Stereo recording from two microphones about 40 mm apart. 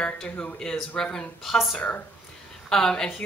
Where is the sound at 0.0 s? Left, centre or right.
Left.